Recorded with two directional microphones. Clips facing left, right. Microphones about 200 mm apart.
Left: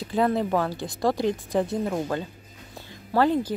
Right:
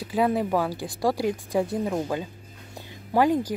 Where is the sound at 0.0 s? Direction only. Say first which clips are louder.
Even; 10° right (ahead or behind).